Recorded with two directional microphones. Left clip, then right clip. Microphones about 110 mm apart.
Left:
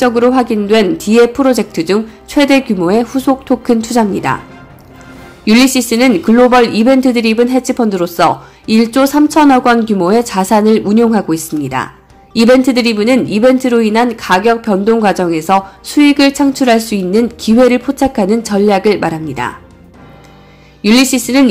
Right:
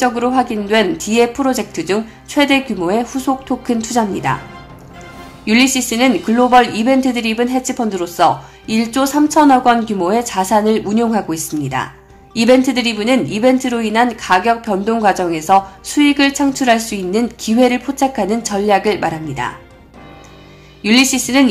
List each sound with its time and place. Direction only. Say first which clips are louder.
0.0 s speech: left 5 dB; 40° left (ahead or behind)
5.4 s speech: left 4 dB; 45° left (ahead or behind)
20.8 s speech: left 3 dB; 35° left (ahead or behind)